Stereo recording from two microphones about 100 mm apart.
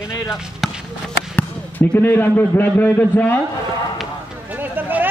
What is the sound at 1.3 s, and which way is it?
Speech, 15° left (ahead or behind).